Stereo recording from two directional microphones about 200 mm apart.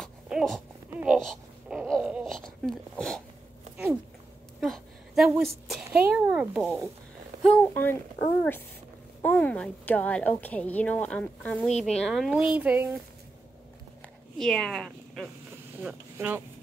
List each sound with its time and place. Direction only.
0.0 s a sound: centre (ahead or behind)
4.6 s a sound: centre (ahead or behind)
7.4 s a woman's voice: 10° left (ahead or behind)
9.2 s a woman's voice: 5° left (ahead or behind); by 12.9 s 10° right (ahead or behind)
14.4 s speech: centre (ahead or behind)
15.8 s speech: 10° right (ahead or behind)